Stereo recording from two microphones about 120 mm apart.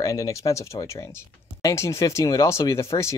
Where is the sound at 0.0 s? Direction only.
30° left (ahead or behind).